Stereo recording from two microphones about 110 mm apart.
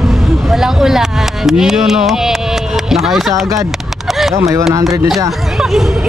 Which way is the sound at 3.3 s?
30° right (ahead or behind).